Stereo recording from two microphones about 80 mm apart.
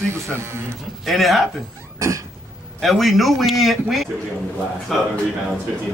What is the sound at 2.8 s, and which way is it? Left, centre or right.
Speech, centre.